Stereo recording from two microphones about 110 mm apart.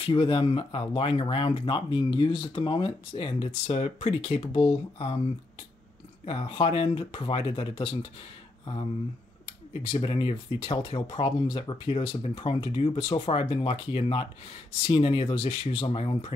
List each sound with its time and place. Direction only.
0.0 s speech: 55° left (ahead or behind)
6.2 s speech: 55° left (ahead or behind)
9.5 s speech: 55° left (ahead or behind)